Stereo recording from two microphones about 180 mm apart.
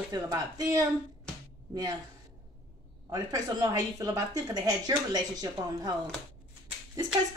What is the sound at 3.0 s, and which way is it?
Speech, 20° right (ahead or behind).